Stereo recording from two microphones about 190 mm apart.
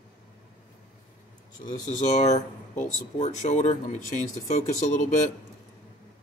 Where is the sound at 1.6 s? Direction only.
40° left (ahead or behind).